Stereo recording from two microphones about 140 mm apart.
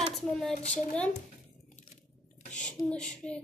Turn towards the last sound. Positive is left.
turn(degrees=10)  # may be behind; listen again after turning